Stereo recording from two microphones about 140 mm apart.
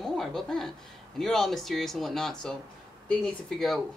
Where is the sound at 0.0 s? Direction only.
Centre (ahead or behind).